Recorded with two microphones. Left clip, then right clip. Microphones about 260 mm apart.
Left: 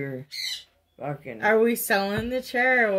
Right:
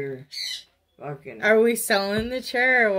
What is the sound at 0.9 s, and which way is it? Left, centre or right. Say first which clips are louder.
Speech: left 2 dB; left.